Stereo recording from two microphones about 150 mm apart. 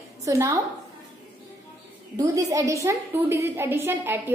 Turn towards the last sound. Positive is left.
turn(degrees=-15)  # may be behind; listen again after turning